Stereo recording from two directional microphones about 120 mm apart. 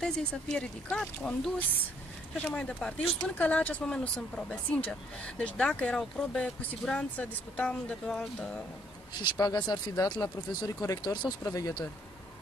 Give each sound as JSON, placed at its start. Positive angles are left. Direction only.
{"t": 0.0, "sound": "speech", "side_deg": 5}
{"t": 9.2, "sound": "speech", "side_deg": 35}